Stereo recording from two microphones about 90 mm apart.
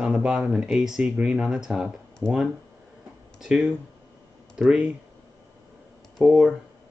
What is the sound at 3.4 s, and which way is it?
Speech, 5° right (ahead or behind).